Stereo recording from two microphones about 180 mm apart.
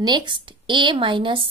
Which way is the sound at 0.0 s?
25° right (ahead or behind).